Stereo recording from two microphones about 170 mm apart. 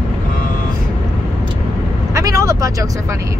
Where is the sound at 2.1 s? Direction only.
20° right (ahead or behind).